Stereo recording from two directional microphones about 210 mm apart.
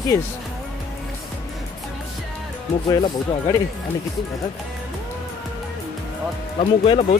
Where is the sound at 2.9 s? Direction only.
20° left (ahead or behind).